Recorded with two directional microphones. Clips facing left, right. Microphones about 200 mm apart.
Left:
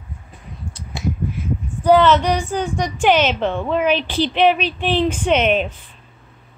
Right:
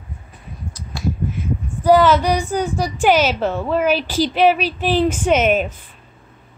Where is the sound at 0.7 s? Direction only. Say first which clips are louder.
Even; 20° left (ahead or behind).